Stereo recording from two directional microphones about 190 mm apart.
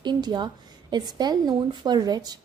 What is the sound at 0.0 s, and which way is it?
A woman's voice, 25° right (ahead or behind).